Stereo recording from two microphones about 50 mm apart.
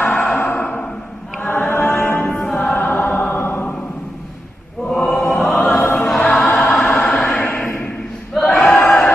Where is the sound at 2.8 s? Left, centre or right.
Left.